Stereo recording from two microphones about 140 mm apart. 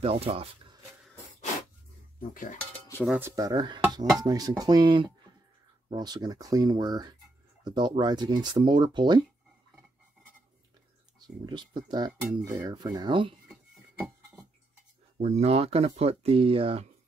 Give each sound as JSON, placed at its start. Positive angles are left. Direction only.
{"t": 0.0, "sound": "speech", "side_deg": -45}
{"t": 2.1, "sound": "cutlery", "side_deg": 75}
{"t": 3.2, "sound": "speech", "side_deg": -20}
{"t": 11.1, "sound": "speech", "side_deg": -30}
{"t": 12.2, "sound": "speech", "side_deg": -5}
{"t": 12.5, "sound": "speech", "side_deg": -30}
{"t": 15.1, "sound": "speech", "side_deg": -55}